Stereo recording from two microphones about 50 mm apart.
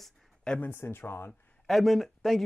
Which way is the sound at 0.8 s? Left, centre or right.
Left.